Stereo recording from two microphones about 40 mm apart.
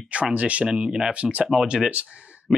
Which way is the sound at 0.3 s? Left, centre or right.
Right.